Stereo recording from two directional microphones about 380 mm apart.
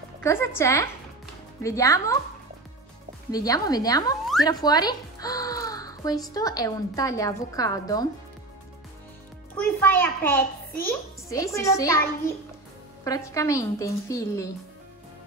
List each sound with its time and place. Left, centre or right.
0.2 s speech: centre
3.3 s speech: centre
9.6 s a child's voice: centre
13.0 s a woman's voice: centre